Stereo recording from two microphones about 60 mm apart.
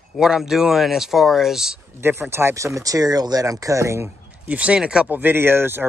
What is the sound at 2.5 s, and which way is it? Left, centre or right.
Speech, right.